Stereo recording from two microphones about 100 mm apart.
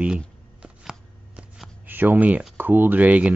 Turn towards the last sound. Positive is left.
turn(degrees=-15)  # may be behind; listen again after turning